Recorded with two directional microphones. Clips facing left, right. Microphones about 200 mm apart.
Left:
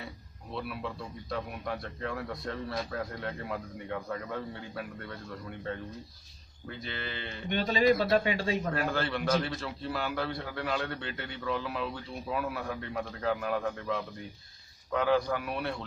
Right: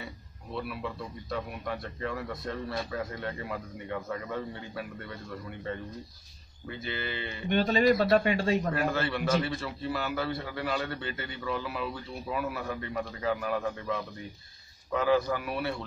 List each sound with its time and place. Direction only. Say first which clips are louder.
0.6 s a man's voice: right 1 dB; centre (ahead or behind)
7.4 s a man's voice: right 2 dB; 45° right (ahead or behind)
8.7 s a man's voice: right 2 dB; 5° right (ahead or behind)